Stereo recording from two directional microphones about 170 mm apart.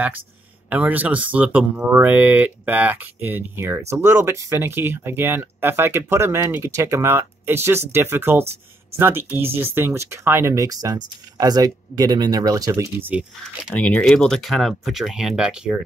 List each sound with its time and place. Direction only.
0.7 s speech: 10° right (ahead or behind)
13.7 s speech: 5° left (ahead or behind)